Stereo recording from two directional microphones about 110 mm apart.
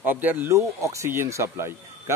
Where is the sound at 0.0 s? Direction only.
20° right (ahead or behind).